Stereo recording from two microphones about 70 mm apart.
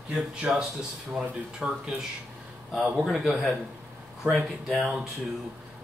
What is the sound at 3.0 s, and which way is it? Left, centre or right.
Speech, centre.